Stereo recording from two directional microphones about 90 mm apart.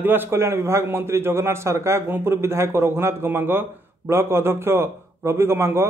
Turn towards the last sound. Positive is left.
turn(degrees=-30)  # may be behind; listen again after turning